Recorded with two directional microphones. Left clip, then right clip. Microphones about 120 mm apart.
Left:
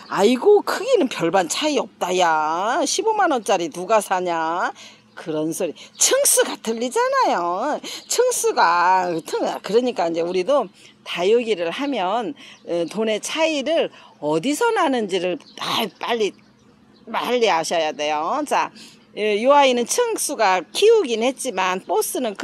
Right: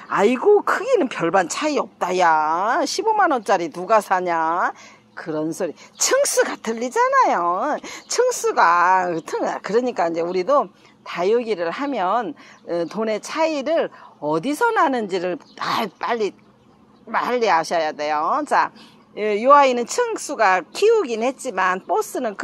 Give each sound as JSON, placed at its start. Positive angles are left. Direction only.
{"t": 0.1, "sound": "a woman's voice", "side_deg": 20}